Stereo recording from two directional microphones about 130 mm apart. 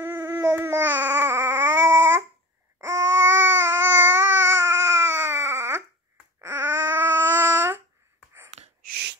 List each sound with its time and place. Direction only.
0.1 s babbling: 30° right (ahead or behind)
0.6 s babbling: 15° right (ahead or behind)
8.5 s a sound: 60° right (ahead or behind)